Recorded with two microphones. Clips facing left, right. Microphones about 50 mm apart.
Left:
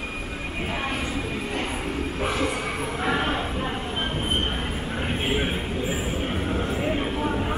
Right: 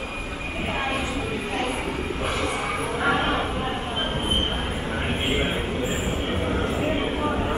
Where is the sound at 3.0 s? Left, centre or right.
Right.